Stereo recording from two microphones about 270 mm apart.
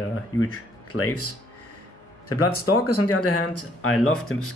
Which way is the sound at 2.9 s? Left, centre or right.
Left.